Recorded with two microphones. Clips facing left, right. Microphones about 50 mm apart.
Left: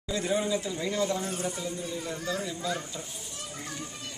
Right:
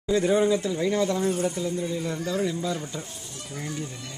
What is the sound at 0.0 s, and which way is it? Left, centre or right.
Speech, right.